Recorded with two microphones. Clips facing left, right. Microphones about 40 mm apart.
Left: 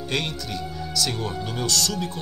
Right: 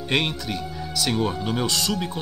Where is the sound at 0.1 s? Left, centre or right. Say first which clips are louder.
Right 4 dB; right.